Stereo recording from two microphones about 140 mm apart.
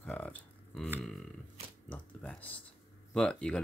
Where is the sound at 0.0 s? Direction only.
10° left (ahead or behind).